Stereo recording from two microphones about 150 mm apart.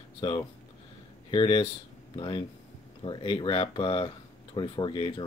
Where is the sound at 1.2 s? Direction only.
35° left (ahead or behind).